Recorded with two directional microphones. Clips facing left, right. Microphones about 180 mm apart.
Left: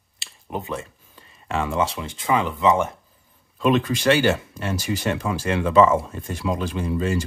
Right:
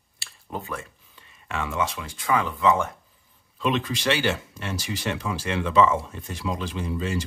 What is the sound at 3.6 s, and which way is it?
Speech, 50° left (ahead or behind).